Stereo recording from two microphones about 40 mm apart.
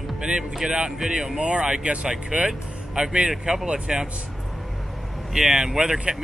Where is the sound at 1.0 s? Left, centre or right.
Centre.